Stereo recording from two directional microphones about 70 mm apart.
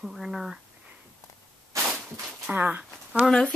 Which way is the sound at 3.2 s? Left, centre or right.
Centre.